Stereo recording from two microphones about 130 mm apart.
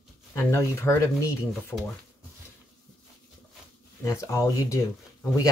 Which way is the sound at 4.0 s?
20° left (ahead or behind).